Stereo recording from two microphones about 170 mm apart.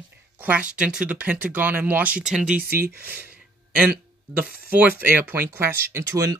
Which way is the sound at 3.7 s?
5° right (ahead or behind).